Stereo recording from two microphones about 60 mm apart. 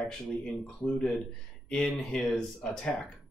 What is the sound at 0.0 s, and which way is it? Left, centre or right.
Speech, centre.